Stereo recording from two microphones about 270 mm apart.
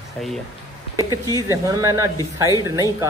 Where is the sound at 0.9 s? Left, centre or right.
Centre.